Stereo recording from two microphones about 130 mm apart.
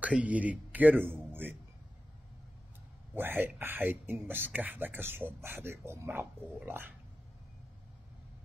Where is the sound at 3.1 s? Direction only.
15° right (ahead or behind).